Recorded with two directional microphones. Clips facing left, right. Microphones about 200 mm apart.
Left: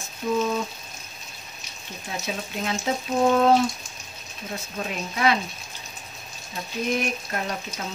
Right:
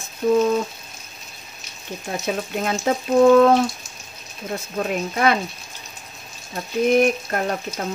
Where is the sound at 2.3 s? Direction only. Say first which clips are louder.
Right 6 dB; 55° right (ahead or behind).